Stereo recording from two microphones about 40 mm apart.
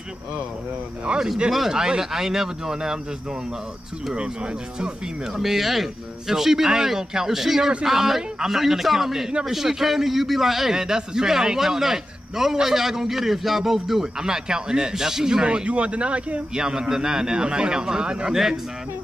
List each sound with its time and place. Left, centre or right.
1.1 s speech: right
1.5 s a man's voice: centre
4.1 s speech: right
5.3 s a man's voice: centre; by 16.4 s right
16.5 s a man's voice: centre